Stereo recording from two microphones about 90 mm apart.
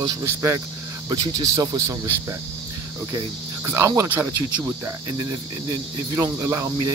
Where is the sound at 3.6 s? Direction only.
35° right (ahead or behind).